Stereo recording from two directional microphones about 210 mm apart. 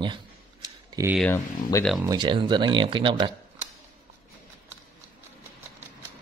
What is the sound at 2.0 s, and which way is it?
Speech, 20° right (ahead or behind).